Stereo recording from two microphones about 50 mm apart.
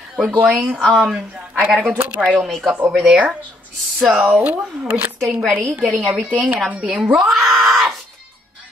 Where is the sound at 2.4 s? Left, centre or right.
Centre.